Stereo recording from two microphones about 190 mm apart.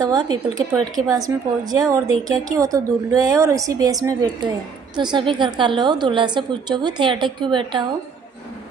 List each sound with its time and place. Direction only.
0.0 s a woman's voice: 20° right (ahead or behind)